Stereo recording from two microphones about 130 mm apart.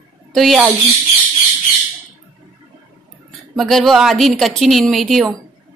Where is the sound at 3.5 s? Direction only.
Centre (ahead or behind).